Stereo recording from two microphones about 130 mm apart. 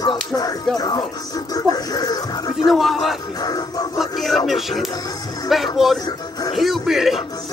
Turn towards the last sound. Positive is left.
turn(degrees=0)  # may be behind; listen again after turning